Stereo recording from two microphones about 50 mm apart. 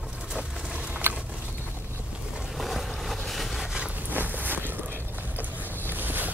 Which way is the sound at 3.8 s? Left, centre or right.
Right.